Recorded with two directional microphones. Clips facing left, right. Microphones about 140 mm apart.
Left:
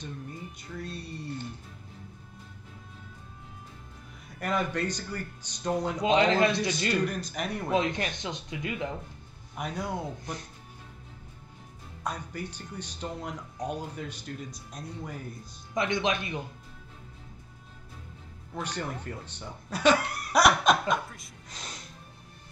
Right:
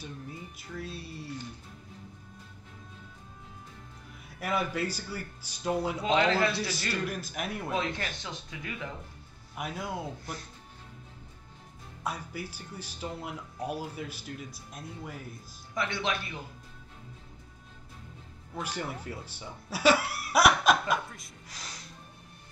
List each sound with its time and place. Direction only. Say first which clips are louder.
0.0 s speech: left 2 dB; 5° right (ahead or behind)
4.4 s speech: left 1 dB; 5° right (ahead or behind)
5.9 s speech: left 4 dB; 15° left (ahead or behind)
7.1 s speech: left 2 dB; 5° right (ahead or behind)
7.7 s speech: left 7 dB; 20° left (ahead or behind)
9.6 s speech: left 2 dB; 5° right (ahead or behind)
12.0 s speech: left 1 dB; 5° right (ahead or behind)
15.7 s speech: left 4 dB; 20° left (ahead or behind)
18.5 s speech: left 1 dB; 5° right (ahead or behind)
21.5 s speech: left 3 dB; 20° left (ahead or behind)